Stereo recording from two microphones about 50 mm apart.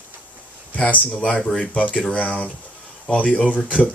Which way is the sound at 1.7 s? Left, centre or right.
Left.